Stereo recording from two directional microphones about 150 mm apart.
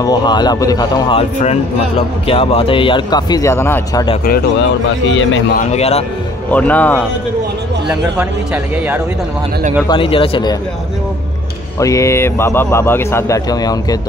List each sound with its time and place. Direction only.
0.0 s a man's voice: 30° left (ahead or behind)
1.4 s a man's voice: 40° left (ahead or behind); by 4.0 s 15° left (ahead or behind)
5.6 s a man's voice: 45° left (ahead or behind)
6.5 s speech: 10° left (ahead or behind)
9.8 s a man's voice: 35° left (ahead or behind)
11.8 s a man's voice: 20° left (ahead or behind)